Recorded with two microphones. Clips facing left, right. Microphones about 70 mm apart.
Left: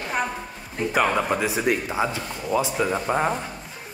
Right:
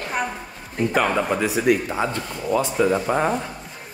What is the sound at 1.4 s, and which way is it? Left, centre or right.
Speech, left.